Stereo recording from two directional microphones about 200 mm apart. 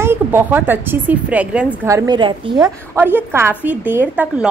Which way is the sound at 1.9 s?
20° right (ahead or behind).